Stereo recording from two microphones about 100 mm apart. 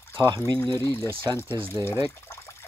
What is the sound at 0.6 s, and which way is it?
Speech, 30° left (ahead or behind).